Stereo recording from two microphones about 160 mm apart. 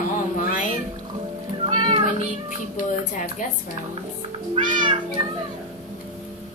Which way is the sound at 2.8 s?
60° left (ahead or behind).